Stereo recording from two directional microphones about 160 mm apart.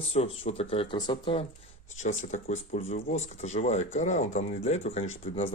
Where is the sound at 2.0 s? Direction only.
50° left (ahead or behind).